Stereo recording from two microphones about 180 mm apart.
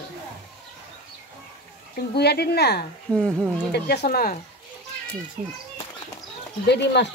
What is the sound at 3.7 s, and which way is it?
Speech, 65° left (ahead or behind).